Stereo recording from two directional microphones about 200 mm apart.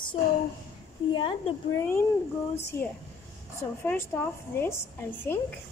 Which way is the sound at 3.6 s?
10° left (ahead or behind).